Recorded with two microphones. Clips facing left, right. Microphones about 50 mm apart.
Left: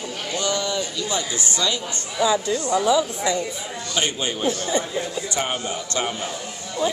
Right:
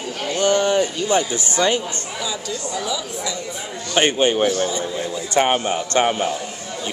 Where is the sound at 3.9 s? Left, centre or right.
Right.